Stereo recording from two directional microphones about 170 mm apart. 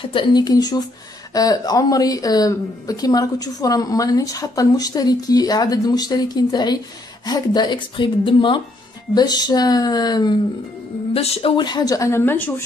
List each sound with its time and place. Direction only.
0.0 s speech: 30° left (ahead or behind)
11.1 s speech: 35° left (ahead or behind); by 12.6 s 10° left (ahead or behind)